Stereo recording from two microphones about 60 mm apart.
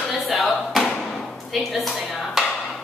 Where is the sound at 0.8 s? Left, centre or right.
Centre.